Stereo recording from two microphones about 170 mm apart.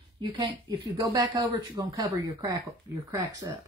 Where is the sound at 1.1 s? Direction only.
20° right (ahead or behind).